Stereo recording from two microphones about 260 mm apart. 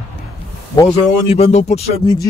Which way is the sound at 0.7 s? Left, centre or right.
Centre.